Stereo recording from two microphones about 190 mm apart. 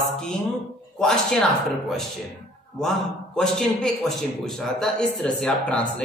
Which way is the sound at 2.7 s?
5° left (ahead or behind).